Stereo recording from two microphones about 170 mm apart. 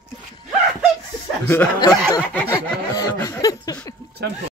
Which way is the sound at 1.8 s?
25° left (ahead or behind).